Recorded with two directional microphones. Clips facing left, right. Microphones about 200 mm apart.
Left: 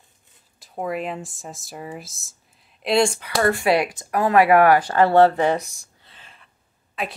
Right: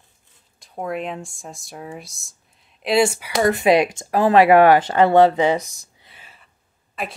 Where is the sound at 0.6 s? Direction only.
Centre (ahead or behind).